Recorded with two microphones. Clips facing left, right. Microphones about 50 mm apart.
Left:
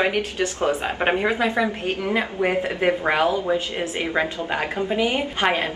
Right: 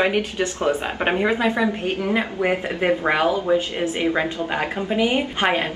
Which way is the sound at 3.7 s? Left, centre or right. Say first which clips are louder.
Right 4 dB; left.